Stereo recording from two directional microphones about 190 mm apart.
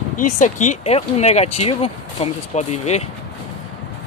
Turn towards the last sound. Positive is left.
turn(degrees=35)  # may be behind; listen again after turning